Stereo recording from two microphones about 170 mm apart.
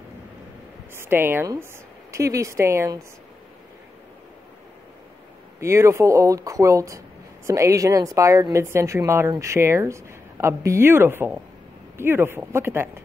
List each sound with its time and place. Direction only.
0.9 s a woman's voice: 15° right (ahead or behind)
5.6 s a woman's voice: 15° right (ahead or behind)